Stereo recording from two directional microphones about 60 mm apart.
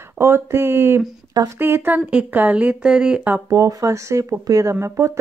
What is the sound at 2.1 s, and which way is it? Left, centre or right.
Speech, right.